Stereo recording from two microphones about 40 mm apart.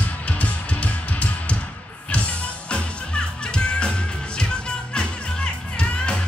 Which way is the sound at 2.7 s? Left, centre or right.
Left.